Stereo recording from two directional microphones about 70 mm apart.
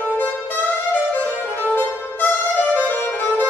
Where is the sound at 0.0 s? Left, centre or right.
Left.